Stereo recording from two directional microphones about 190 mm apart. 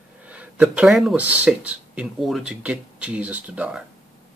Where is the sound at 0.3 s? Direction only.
5° right (ahead or behind).